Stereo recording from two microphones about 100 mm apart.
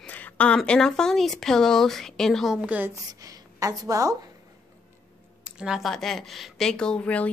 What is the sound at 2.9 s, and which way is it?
A woman's voice, 35° right (ahead or behind).